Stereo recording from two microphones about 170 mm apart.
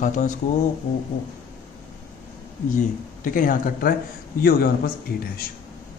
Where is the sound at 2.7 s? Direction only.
50° left (ahead or behind).